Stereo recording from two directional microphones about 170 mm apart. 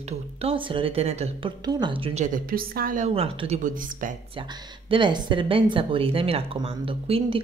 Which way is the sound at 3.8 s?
50° right (ahead or behind).